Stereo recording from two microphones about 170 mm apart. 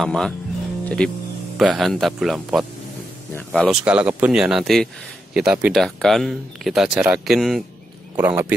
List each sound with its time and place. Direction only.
0.0 s a man's voice: 5° left (ahead or behind)